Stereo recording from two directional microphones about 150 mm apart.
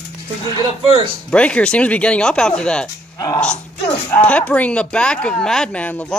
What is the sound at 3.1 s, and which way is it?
Speech, 25° left (ahead or behind).